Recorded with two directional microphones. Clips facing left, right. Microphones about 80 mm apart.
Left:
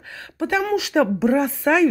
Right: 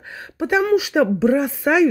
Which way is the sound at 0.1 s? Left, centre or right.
Centre.